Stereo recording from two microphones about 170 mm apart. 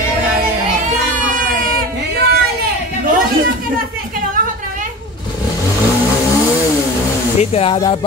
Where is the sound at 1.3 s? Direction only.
55° right (ahead or behind).